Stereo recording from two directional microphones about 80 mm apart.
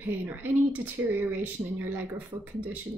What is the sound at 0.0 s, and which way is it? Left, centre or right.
Speech, right.